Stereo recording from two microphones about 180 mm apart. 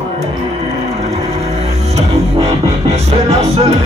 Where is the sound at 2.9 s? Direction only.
35° right (ahead or behind).